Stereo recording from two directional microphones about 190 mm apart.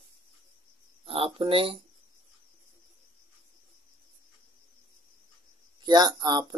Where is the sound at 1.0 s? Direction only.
30° right (ahead or behind).